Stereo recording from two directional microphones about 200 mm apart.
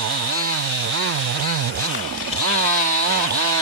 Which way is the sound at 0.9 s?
90° right.